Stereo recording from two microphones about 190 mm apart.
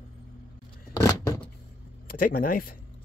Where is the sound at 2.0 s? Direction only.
50° left (ahead or behind).